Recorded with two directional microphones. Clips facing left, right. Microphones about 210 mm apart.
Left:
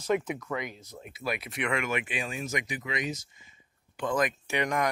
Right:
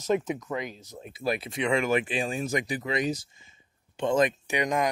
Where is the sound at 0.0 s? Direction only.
20° right (ahead or behind).